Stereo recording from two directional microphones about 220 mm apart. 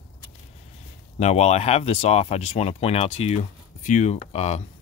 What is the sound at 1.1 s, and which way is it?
Speech, 30° left (ahead or behind).